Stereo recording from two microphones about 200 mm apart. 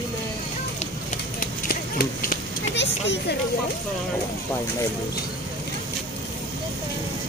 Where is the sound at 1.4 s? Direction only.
45° left (ahead or behind).